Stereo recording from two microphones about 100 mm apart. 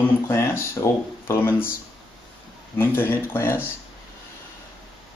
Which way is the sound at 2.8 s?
25° left (ahead or behind).